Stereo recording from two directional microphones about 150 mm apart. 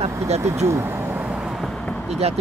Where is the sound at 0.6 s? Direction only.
15° right (ahead or behind); by 2.2 s 5° left (ahead or behind).